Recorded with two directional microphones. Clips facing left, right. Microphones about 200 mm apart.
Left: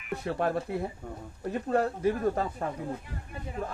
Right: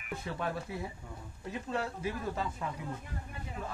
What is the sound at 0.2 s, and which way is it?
Speech, 50° left (ahead or behind).